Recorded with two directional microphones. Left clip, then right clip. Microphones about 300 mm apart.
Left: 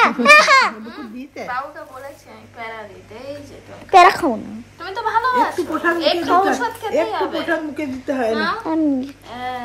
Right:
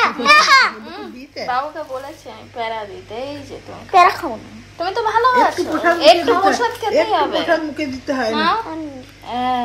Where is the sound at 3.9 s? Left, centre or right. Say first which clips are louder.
Left 2 dB; left.